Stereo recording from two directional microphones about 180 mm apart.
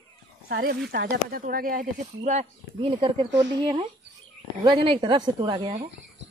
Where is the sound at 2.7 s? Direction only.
30° right (ahead or behind).